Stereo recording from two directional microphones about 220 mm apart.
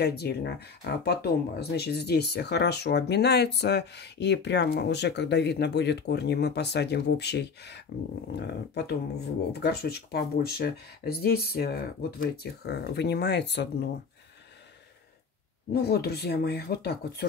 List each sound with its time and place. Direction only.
0.0 s speech: 50° left (ahead or behind)
15.7 s speech: 45° left (ahead or behind)